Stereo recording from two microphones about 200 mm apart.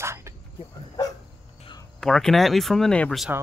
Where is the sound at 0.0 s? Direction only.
15° right (ahead or behind).